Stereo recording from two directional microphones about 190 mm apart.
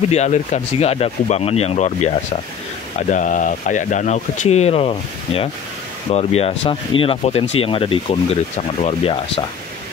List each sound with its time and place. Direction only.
0.1 s speech: 35° left (ahead or behind)